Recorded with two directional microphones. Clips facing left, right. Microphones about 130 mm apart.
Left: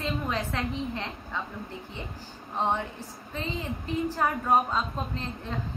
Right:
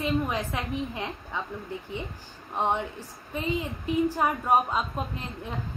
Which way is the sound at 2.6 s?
15° right (ahead or behind).